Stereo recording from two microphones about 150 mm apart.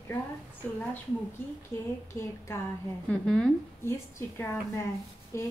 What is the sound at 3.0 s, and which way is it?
Speech, 5° left (ahead or behind).